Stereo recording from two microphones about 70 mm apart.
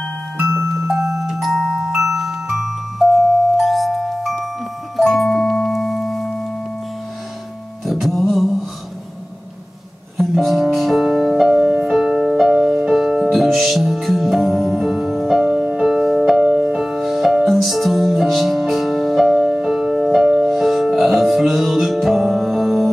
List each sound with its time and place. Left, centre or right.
0.5 s music: right
0.8 s glockenspiel: centre
4.9 s music: centre
7.8 s music: centre
10.1 s music: centre